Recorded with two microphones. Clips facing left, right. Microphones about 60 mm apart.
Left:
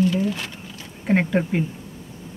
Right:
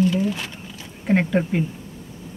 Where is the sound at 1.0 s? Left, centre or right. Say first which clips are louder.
Even; centre.